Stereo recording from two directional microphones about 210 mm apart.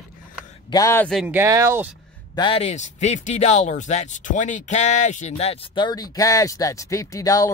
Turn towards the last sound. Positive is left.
turn(degrees=15)  # may be behind; listen again after turning